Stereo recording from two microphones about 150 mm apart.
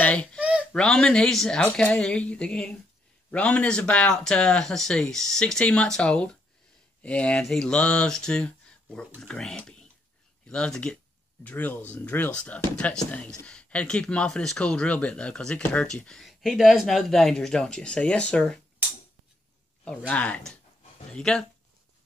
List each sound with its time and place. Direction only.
0.0 s babbling: 10° left (ahead or behind)
0.4 s a sound: 10° right (ahead or behind)
0.7 s speech: 5° left (ahead or behind)
20.1 s speech: 10° left (ahead or behind)